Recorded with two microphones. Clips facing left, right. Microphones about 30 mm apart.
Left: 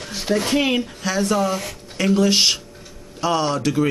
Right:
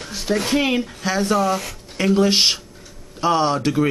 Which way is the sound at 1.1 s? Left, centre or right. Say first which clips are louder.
Right 1 dB; centre.